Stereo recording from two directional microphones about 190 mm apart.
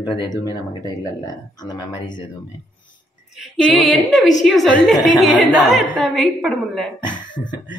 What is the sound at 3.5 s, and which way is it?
A woman's voice, 5° left (ahead or behind).